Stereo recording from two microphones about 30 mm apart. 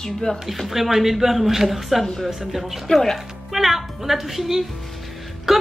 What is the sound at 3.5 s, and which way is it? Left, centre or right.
Speech, centre.